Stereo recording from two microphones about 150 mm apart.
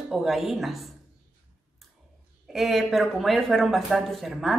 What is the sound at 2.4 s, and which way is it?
A woman's voice, centre (ahead or behind).